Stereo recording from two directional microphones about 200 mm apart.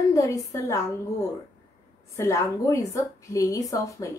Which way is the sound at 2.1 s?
15° left (ahead or behind).